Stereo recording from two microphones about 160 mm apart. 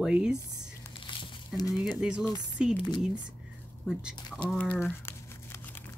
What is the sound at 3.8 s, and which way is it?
Crumpling, 5° right (ahead or behind).